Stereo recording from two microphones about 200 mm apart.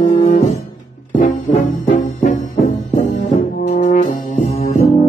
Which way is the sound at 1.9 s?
35° left (ahead or behind).